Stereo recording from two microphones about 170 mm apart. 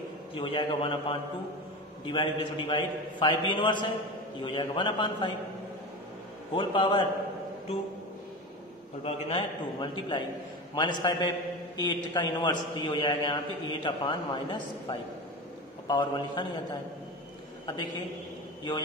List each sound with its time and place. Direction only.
0.3 s a man's voice: 30° left (ahead or behind)
6.5 s a man's voice: 30° left (ahead or behind)
9.0 s a man's voice: 30° left (ahead or behind)
17.6 s a man's voice: 25° left (ahead or behind)